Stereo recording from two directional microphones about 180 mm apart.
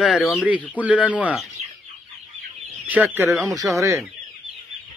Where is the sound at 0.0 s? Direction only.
Centre (ahead or behind).